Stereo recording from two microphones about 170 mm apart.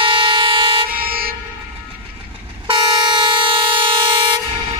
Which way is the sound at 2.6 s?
30° right (ahead or behind).